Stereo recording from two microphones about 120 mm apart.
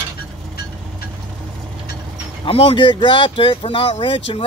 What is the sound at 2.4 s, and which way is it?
Speech, 50° left (ahead or behind).